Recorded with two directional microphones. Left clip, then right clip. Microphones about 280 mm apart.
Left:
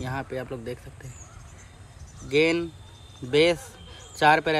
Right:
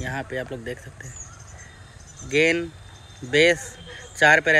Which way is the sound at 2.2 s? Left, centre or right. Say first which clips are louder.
Right 2 dB; centre.